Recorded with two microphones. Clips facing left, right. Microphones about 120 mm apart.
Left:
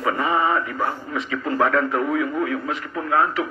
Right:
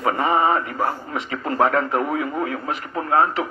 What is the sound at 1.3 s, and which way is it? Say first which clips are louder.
Speech: right 1 dB; 30° right (ahead or behind).